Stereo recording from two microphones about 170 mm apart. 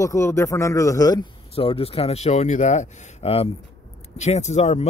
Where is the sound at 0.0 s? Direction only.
15° left (ahead or behind).